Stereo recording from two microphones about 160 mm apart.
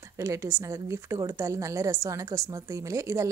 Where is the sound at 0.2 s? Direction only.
20° right (ahead or behind).